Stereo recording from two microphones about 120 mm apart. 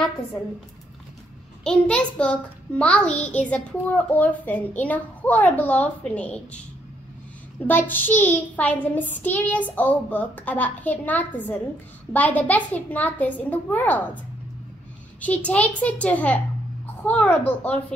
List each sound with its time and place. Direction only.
1.6 s a child's voice: 10° left (ahead or behind)
7.6 s a child's voice: 15° left (ahead or behind)
15.1 s a child's voice: 10° left (ahead or behind)